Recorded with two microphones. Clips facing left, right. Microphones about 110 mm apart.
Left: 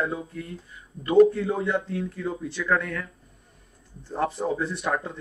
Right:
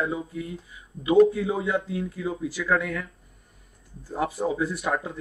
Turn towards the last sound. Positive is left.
turn(degrees=0)  # may be behind; listen again after turning